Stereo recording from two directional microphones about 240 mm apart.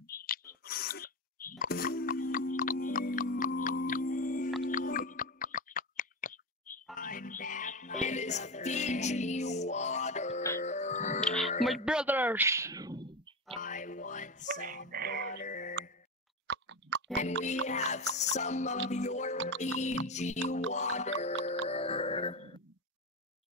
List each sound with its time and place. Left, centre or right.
0.0 s a sound: left
1.6 s music: left
4.6 s a sound: left
7.0 s music: left
11.6 s a sound: centre
13.6 s music: left
14.9 s music: right
15.3 s music: left
16.4 s chewing: right
17.1 s music: left